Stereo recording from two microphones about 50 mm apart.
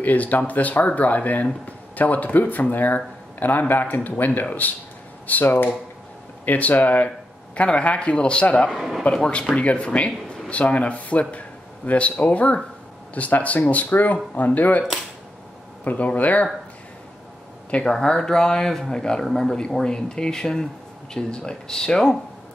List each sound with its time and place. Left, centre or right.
0.0 s speech: left
8.6 s speech: centre
9.0 s speech: centre
15.8 s speech: left
17.8 s a man's voice: centre